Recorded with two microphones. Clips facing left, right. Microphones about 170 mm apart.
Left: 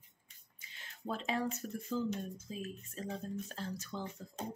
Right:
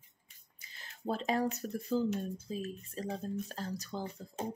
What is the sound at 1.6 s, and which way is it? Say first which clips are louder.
Speech: right 4 dB; 35° right (ahead or behind).